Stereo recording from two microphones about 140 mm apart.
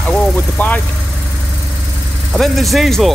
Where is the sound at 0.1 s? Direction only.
10° left (ahead or behind).